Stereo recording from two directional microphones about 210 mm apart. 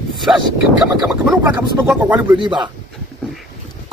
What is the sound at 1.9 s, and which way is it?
Speech, 5° right (ahead or behind).